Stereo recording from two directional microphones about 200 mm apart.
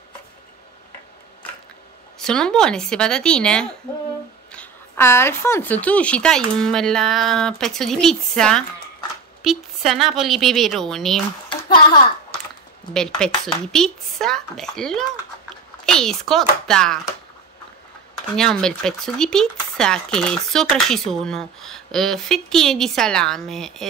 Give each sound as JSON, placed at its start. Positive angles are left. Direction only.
{"t": 2.1, "sound": "speech", "side_deg": 5}
{"t": 11.4, "sound": "a sound", "side_deg": 25}
{"t": 12.9, "sound": "speech", "side_deg": 5}
{"t": 18.3, "sound": "speech", "side_deg": 5}